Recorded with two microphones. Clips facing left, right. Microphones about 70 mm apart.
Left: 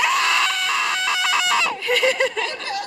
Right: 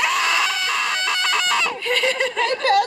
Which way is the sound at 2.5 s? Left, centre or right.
Right.